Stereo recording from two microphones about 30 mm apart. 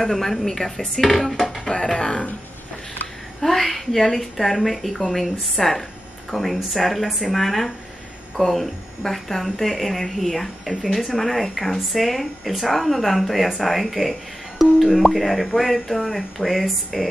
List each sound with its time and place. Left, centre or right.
0.0 s speech: centre
1.7 s speech: centre
3.3 s a woman's voice: centre
14.6 s plop: centre
15.0 s a woman's voice: centre